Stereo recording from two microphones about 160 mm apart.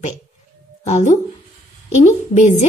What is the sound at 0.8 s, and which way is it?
A woman's voice, 50° left (ahead or behind).